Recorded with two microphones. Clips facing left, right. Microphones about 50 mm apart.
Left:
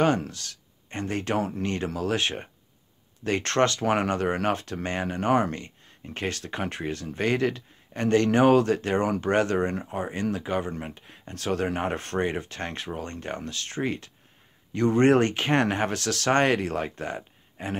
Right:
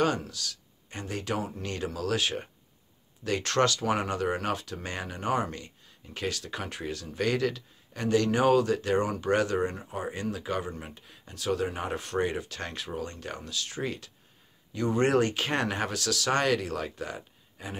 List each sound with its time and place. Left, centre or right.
0.0 s speech: left
1.6 s speech: left
11.2 s speech: left